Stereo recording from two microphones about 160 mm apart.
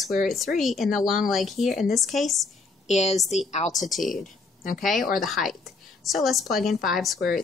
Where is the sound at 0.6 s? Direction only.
Centre (ahead or behind).